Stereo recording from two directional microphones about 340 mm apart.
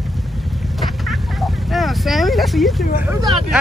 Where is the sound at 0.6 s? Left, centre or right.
Centre.